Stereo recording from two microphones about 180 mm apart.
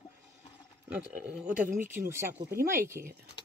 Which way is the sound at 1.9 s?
15° right (ahead or behind).